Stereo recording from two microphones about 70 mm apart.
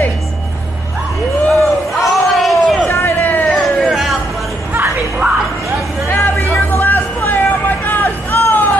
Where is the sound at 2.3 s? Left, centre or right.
Centre.